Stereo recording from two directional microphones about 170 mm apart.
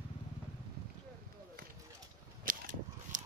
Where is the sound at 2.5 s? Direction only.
55° right (ahead or behind).